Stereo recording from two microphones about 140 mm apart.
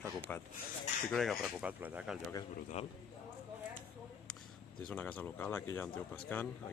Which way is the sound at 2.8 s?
55° left (ahead or behind).